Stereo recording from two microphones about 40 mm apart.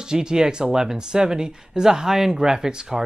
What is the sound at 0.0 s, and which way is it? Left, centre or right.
Speech, centre.